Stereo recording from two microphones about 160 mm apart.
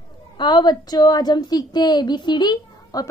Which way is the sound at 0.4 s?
25° left (ahead or behind).